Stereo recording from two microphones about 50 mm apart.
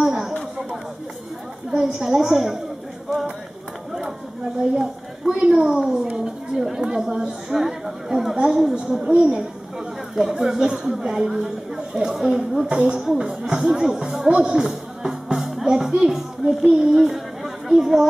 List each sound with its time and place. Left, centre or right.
0.0 s a sound: centre
1.7 s a woman's voice: centre
4.7 s speech: centre
9.0 s a woman's voice: centre
10.1 s a woman's voice: centre
14.4 s music: centre
16.1 s speech: centre